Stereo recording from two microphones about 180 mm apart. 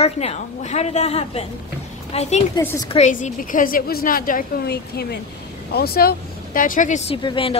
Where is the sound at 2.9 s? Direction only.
40° left (ahead or behind).